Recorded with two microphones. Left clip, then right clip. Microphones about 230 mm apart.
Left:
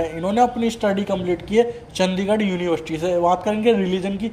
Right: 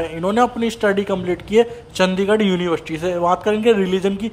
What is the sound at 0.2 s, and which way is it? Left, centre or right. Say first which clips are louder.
A man's voice: right 2 dB; centre.